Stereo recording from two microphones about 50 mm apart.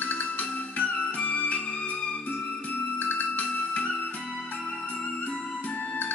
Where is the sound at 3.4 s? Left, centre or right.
Left.